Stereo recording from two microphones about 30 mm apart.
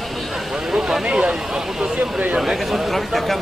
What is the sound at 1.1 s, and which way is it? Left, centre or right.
Speech, right.